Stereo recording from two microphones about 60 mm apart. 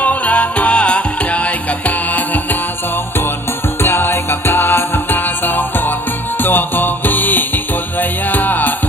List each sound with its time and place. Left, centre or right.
0.0 s music: left
3.8 s music: left